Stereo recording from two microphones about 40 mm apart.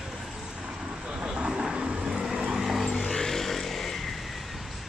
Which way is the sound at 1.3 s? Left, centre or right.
Right.